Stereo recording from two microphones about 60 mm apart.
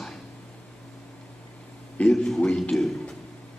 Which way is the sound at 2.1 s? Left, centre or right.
Centre.